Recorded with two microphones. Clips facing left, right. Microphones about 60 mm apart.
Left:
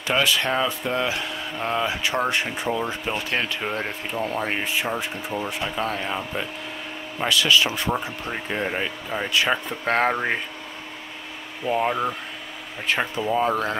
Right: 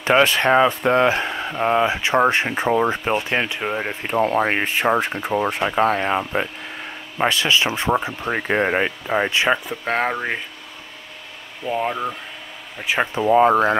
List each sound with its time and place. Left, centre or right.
0.0 s speech: right; by 3.9 s centre
4.1 s speech: right
7.2 s speech: right
8.3 s speech: right
9.3 s speech: right
9.7 s speech: centre
11.6 s speech: centre
12.8 s speech: centre
13.1 s speech: right